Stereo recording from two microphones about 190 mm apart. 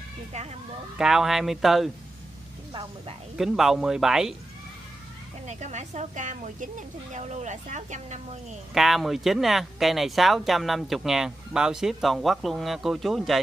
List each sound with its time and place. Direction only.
0.9 s speech: 5° right (ahead or behind)
2.7 s speech: 25° right (ahead or behind)
3.3 s speech: centre (ahead or behind)
5.5 s speech: 40° right (ahead or behind)
8.7 s speech: centre (ahead or behind)